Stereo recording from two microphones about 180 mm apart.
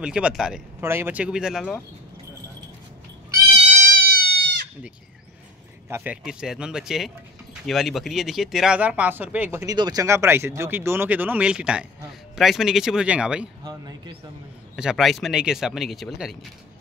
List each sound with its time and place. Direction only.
0.0 s speech: 5° right (ahead or behind)
3.9 s music: 60° right (ahead or behind)
5.9 s speech: 10° right (ahead or behind)
13.7 s speech: 20° right (ahead or behind)
14.8 s speech: centre (ahead or behind)